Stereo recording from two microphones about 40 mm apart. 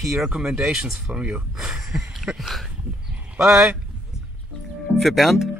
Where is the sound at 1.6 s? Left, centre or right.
Centre.